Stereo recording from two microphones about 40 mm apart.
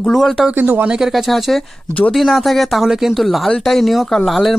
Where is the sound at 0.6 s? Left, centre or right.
Right.